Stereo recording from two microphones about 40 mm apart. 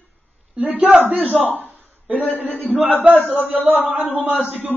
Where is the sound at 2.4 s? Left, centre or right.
Left.